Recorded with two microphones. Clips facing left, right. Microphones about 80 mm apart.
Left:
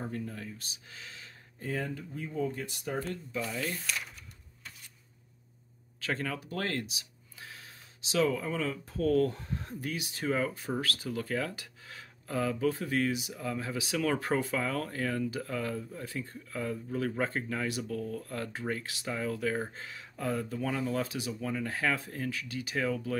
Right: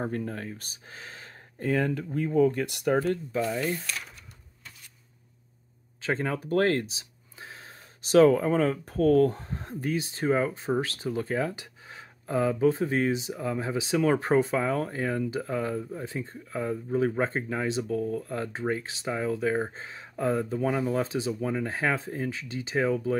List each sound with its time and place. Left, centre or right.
0.0 s speech: right
0.8 s gasp: right
1.6 s speech: right
3.3 s speech: right
5.9 s a sound: right
8.0 s speech: right